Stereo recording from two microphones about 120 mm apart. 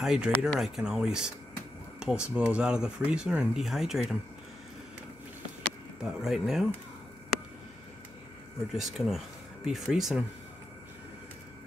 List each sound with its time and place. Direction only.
0.0 s speech: 5° right (ahead or behind)
6.0 s speech: 5° right (ahead or behind)
8.7 s speech: centre (ahead or behind)